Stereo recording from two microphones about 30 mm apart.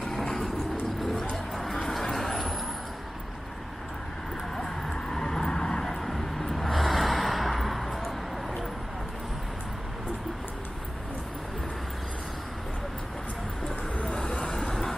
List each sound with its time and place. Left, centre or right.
0.1 s vehicle: centre
5.1 s vehicle: centre
5.9 s vehicle: centre
14.0 s vehicle: left